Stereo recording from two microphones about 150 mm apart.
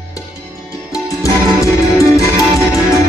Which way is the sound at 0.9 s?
20° left (ahead or behind).